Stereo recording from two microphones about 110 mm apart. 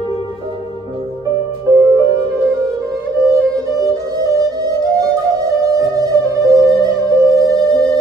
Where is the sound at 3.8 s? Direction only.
30° right (ahead or behind).